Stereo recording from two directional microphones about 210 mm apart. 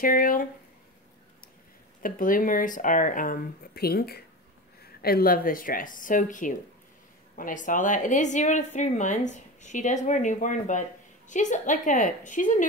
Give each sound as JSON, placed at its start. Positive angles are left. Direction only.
{"t": 0.0, "sound": "a woman's voice", "side_deg": 40}
{"t": 2.0, "sound": "a woman's voice", "side_deg": 40}